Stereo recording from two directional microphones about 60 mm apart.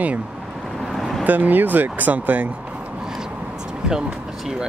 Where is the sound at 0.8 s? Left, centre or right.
Centre.